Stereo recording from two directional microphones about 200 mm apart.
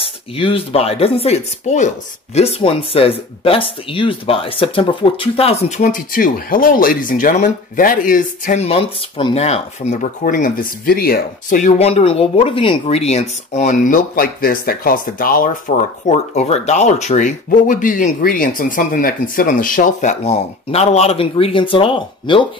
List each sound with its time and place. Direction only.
0.0 s speech: 25° left (ahead or behind)
10.2 s speech: 45° left (ahead or behind)
16.1 s speech: 35° left (ahead or behind)